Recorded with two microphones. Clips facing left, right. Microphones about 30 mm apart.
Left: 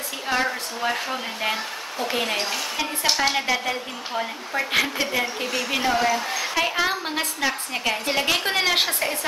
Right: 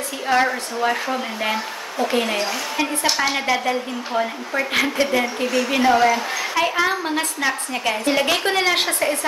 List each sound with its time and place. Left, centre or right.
0.3 s a woman's voice: centre
0.8 s a woman's voice: centre
5.9 s a woman's voice: centre
6.5 s a woman's voice: centre